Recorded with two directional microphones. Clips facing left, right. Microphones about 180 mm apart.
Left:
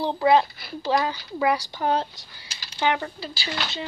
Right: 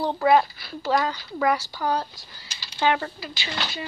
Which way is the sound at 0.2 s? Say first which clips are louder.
Even; 20° left (ahead or behind).